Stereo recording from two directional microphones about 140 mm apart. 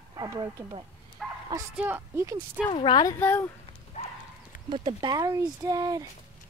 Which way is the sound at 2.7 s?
30° left (ahead or behind).